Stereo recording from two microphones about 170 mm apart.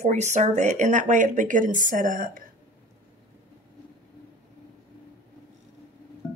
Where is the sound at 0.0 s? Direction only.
45° right (ahead or behind).